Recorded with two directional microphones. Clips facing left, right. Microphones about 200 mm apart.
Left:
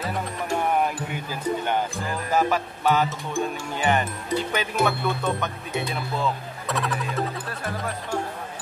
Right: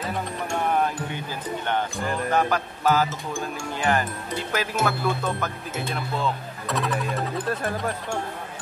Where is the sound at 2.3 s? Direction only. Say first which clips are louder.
Left 3 dB; centre (ahead or behind).